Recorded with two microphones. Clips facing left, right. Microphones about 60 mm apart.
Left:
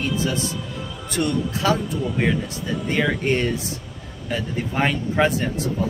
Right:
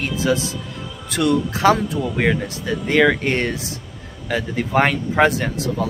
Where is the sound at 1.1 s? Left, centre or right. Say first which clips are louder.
Right 4 dB; right.